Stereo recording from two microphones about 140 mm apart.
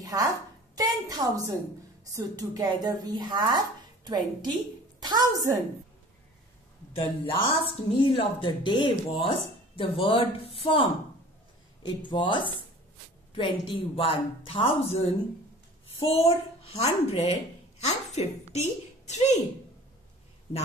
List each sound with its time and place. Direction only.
0.0 s a sound: 25° right (ahead or behind)
0.7 s speech: 25° right (ahead or behind)
6.9 s a child's voice: 40° left (ahead or behind)